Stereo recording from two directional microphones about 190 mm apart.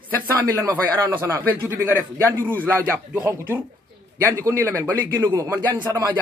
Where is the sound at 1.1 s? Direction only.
15° right (ahead or behind).